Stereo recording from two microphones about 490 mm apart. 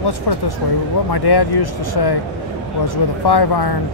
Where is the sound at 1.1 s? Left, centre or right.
Left.